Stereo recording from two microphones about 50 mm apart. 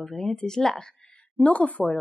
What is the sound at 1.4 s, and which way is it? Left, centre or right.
Speech, left.